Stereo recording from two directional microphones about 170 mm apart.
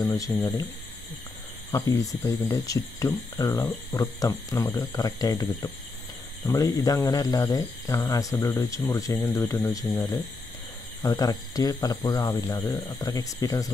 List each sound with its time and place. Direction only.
0.0 s speech: 20° left (ahead or behind)
1.7 s speech: 20° left (ahead or behind)